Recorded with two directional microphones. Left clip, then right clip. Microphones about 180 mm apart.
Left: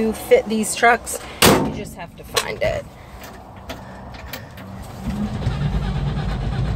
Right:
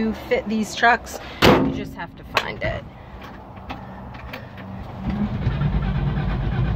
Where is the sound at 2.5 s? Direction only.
15° left (ahead or behind).